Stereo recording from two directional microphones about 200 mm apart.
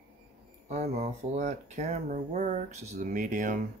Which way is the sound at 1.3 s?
35° right (ahead or behind).